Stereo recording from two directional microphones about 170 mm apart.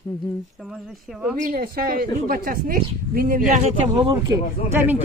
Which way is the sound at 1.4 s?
60° right (ahead or behind).